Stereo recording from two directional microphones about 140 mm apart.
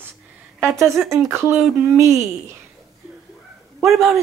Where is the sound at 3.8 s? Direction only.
Centre (ahead or behind).